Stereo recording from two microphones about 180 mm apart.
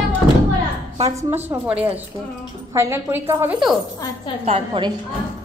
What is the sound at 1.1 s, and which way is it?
A woman's voice, 15° right (ahead or behind).